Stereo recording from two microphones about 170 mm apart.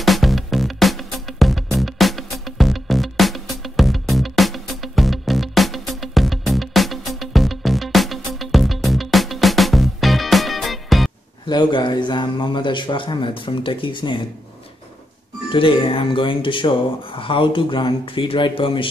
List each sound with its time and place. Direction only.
0.0 s music: centre (ahead or behind)
11.4 s a man's voice: 25° left (ahead or behind)
15.5 s speech: 30° left (ahead or behind)